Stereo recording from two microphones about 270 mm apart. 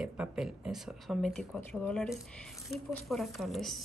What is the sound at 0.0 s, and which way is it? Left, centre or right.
Speech, centre.